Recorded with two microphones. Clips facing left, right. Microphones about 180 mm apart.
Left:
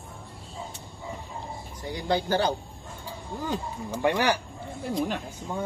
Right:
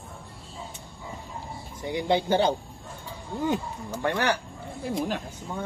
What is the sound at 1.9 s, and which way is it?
Speech, 20° right (ahead or behind).